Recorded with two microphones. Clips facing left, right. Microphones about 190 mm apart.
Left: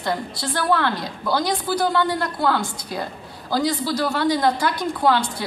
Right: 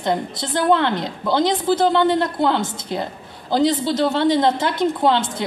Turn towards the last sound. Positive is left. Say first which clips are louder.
# right 2 dB
turn(degrees=-20)  # may be behind; listen again after turning